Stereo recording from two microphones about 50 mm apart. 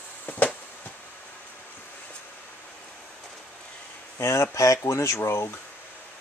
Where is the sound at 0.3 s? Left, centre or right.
Left.